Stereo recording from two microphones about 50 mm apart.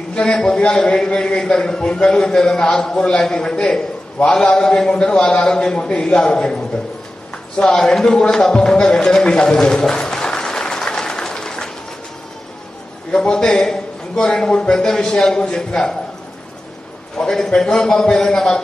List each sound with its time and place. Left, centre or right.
0.1 s a man's voice: centre
7.7 s a sound: centre
13.3 s a man's voice: centre
17.2 s a man's voice: centre